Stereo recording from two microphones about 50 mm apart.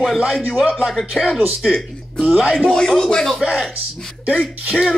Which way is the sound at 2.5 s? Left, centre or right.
Centre.